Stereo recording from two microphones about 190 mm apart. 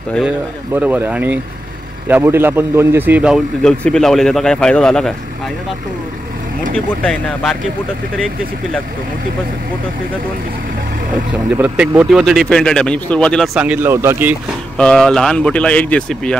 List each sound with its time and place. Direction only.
0.7 s speech: 10° right (ahead or behind)
7.0 s speech: 5° left (ahead or behind)
11.5 s speech: 5° right (ahead or behind)
13.6 s speech: 10° right (ahead or behind)
14.8 s speech: 5° left (ahead or behind)